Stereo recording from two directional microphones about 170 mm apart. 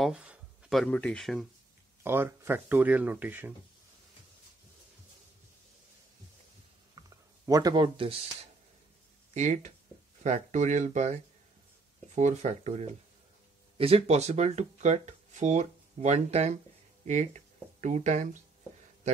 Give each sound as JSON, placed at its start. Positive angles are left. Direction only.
{"t": 0.0, "sound": "speech", "side_deg": -5}
{"t": 2.0, "sound": "speech", "side_deg": -15}
{"t": 7.0, "sound": "a sound", "side_deg": -20}
{"t": 9.3, "sound": "speech", "side_deg": -45}
{"t": 12.2, "sound": "speech", "side_deg": -45}